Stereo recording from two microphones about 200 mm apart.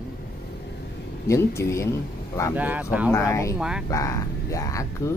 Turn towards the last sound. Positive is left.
turn(degrees=15)  # may be behind; listen again after turning